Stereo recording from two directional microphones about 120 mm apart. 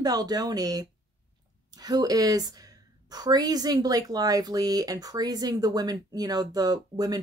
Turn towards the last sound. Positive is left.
turn(degrees=-35)  # may be behind; listen again after turning